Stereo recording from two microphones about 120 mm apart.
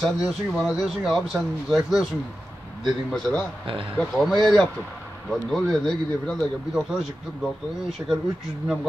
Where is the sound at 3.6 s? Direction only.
45° right (ahead or behind).